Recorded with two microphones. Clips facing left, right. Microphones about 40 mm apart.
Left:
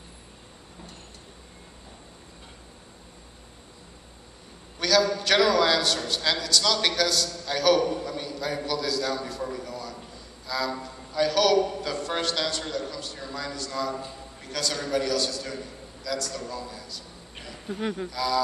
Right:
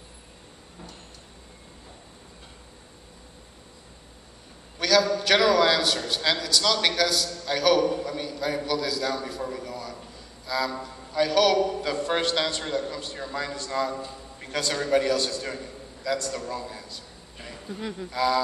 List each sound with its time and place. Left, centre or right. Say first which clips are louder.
4.7 s a man's voice: right 1 dB; centre
12.0 s a man's voice: right 3 dB; centre
17.7 s speech: left 5 dB; left
18.1 s a man's voice: right 4 dB; right